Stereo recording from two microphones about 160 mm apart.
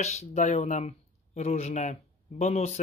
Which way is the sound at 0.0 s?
40° left (ahead or behind).